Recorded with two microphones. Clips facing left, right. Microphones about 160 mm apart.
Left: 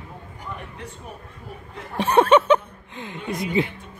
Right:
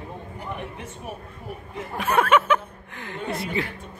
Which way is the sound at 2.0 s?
30° left (ahead or behind).